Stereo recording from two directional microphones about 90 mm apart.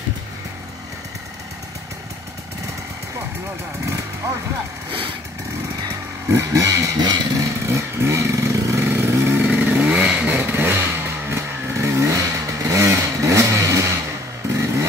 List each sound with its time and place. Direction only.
6.2 s vehicle: 30° right (ahead or behind)
7.0 s vehicle: 50° right (ahead or behind)
7.7 s vehicle: 30° right (ahead or behind)
9.4 s vehicle: 15° right (ahead or behind); by 13.9 s 35° right (ahead or behind)
14.5 s motorcycle: 35° right (ahead or behind)